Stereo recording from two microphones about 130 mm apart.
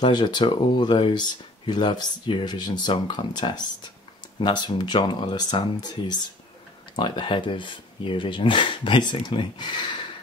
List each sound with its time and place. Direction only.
0.0 s speech: 35° left (ahead or behind)